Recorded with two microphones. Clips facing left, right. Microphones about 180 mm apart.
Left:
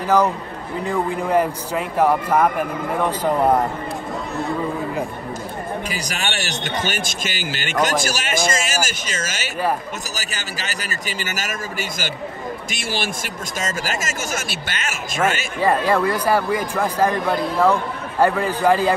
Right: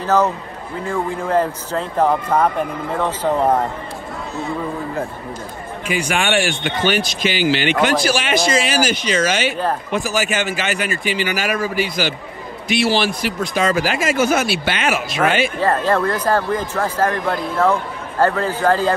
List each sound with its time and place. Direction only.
0.0 s speech: 15° left (ahead or behind)
5.9 s a man's voice: 40° left (ahead or behind)
15.6 s speech: 10° left (ahead or behind)